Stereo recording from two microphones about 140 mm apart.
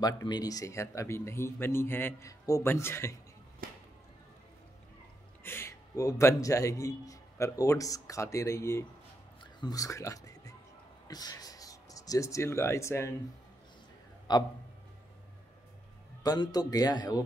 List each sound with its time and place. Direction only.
0.0 s a man's voice: 30° left (ahead or behind)
3.6 s music: 90° right
5.4 s a man's voice: 15° left (ahead or behind)
9.4 s music: 30° left (ahead or behind)
11.1 s speech: 25° left (ahead or behind)
14.3 s a man's voice: 30° left (ahead or behind)
16.2 s a man's voice: 30° left (ahead or behind)